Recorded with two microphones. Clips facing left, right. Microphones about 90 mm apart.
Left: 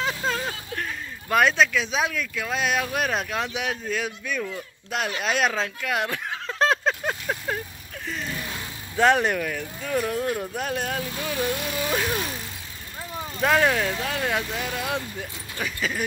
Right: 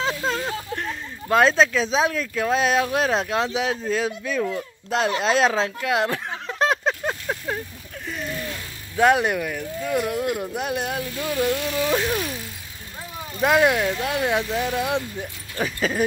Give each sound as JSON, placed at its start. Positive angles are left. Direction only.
{"t": 0.0, "sound": "speech", "side_deg": -20}
{"t": 6.4, "sound": "a sound", "side_deg": -15}
{"t": 7.2, "sound": "vehicle", "side_deg": -5}
{"t": 8.9, "sound": "speech", "side_deg": -10}
{"t": 11.3, "sound": "music", "side_deg": 15}
{"t": 13.4, "sound": "speech", "side_deg": -10}